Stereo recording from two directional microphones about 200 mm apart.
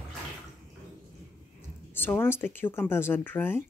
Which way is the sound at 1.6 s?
10° left (ahead or behind).